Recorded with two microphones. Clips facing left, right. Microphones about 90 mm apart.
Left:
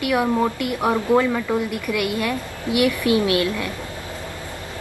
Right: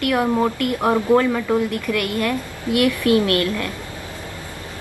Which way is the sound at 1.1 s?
20° left (ahead or behind).